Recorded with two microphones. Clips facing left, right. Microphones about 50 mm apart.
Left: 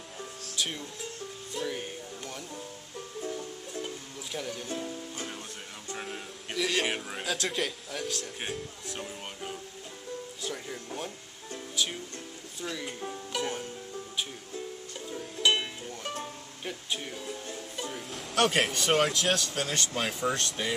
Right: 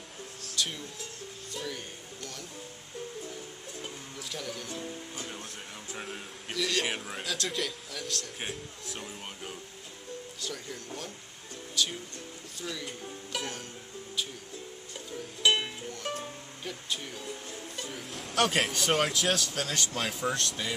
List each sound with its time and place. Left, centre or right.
0.6 s speech: centre
1.5 s music: centre
4.2 s speech: centre
4.6 s speech: left
5.9 s speech: centre
10.4 s speech: centre
11.7 s music: centre
12.5 s speech: centre
13.3 s speech: centre
15.4 s music: centre
16.6 s music: centre
17.7 s speech: centre